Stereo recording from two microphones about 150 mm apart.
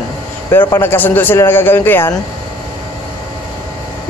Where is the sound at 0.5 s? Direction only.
15° left (ahead or behind).